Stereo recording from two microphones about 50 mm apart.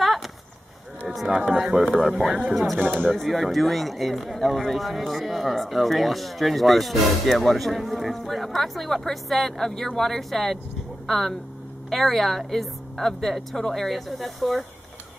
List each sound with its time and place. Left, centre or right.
0.0 s a sound: centre
1.0 s speech: centre
2.8 s speech: right
3.1 s speech: centre